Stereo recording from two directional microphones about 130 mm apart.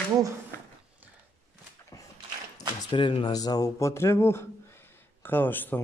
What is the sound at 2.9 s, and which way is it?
Speech, 40° left (ahead or behind).